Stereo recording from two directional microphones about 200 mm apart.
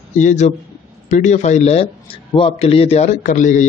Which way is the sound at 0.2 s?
35° left (ahead or behind).